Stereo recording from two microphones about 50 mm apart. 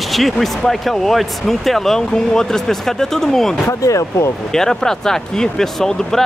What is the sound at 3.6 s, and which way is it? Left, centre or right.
Speech, left.